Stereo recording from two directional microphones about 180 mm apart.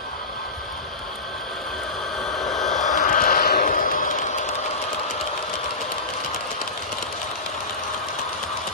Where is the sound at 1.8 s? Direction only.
Centre (ahead or behind).